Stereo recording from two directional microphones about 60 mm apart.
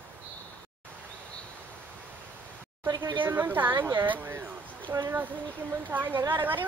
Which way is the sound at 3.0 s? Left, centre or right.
Right.